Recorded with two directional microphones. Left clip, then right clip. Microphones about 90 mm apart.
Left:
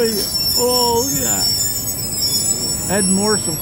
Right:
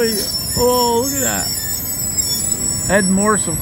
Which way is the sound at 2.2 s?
30° left (ahead or behind).